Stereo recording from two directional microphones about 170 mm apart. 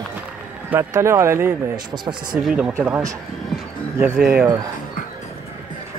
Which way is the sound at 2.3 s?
5° right (ahead or behind).